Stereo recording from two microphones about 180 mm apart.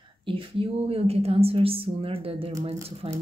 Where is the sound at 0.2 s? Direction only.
30° right (ahead or behind).